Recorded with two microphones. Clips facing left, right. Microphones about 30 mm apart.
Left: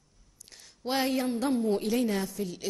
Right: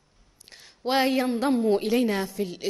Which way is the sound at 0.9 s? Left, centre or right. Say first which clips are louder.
Right 5 dB; centre.